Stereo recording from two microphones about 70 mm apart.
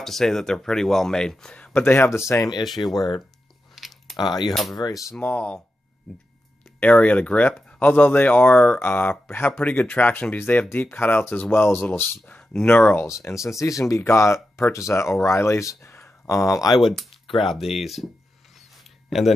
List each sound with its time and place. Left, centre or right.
0.0 s speech: centre
1.8 s speech: left
2.7 s speech: left
3.7 s a sound: centre
4.2 s speech: left
4.8 s speech: left
5.2 s speech: left
6.1 s speech: centre
6.8 s speech: centre
13.0 s speech: left
15.8 s a sound: left
16.3 s speech: left
17.6 s speech: centre
19.0 s speech: centre